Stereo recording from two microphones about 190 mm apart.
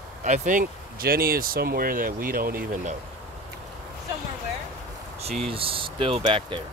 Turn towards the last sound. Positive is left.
turn(degrees=-25)  # may be behind; listen again after turning